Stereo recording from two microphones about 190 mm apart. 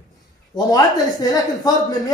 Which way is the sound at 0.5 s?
20° left (ahead or behind).